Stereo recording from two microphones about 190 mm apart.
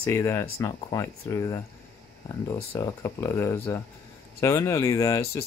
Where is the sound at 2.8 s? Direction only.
15° left (ahead or behind).